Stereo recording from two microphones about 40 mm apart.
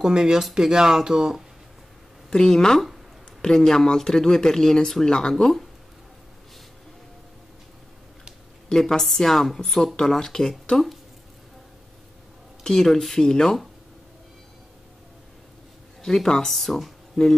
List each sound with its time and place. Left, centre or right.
0.0 s speech: centre
2.3 s speech: centre
5.4 s speech: centre
8.6 s speech: centre
12.8 s speech: centre
16.0 s a woman's voice: centre